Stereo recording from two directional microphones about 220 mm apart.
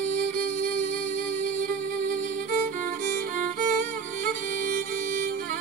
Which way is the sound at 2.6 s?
35° right (ahead or behind).